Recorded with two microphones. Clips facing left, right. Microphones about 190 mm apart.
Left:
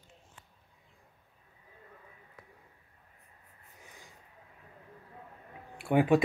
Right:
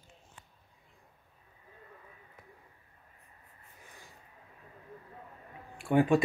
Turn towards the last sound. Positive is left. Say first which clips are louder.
# even
turn(degrees=15)  # may be behind; listen again after turning